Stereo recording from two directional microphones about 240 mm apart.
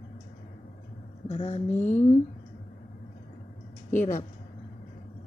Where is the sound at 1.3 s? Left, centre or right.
Left.